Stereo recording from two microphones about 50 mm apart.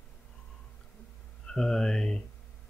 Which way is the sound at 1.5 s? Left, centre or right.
Centre.